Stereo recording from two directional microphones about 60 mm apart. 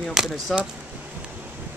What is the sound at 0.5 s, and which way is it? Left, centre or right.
Speech, centre.